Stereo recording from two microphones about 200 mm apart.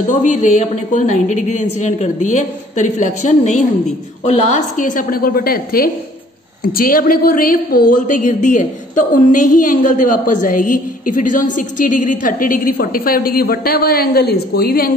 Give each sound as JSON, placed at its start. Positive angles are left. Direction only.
{"t": 0.1, "sound": "a woman's voice", "side_deg": 35}